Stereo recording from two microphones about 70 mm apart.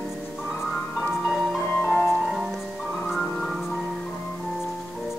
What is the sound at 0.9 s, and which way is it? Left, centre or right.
Music, centre.